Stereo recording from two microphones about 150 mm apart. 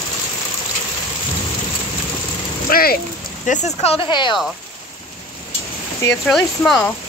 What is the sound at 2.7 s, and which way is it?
Speech, 90° left.